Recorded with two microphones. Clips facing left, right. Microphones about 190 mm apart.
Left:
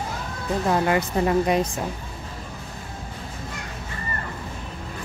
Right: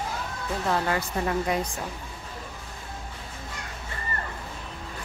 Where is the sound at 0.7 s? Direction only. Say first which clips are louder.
Left 5 dB; 20° left (ahead or behind).